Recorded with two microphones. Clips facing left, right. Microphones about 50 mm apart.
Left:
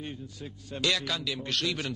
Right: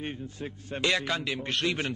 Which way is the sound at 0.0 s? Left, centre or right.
Right.